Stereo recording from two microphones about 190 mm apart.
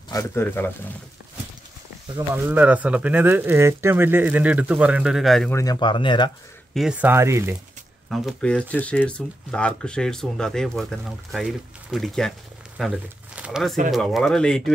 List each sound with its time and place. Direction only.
0.1 s speech: 15° left (ahead or behind)
2.1 s speech: 10° right (ahead or behind)
5.5 s speech: 20° left (ahead or behind)
6.7 s speech: 5° right (ahead or behind)
8.1 s speech: 5° left (ahead or behind)